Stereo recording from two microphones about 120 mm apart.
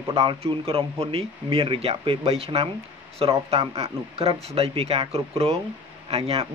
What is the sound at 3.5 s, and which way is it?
Speech, 55° right (ahead or behind).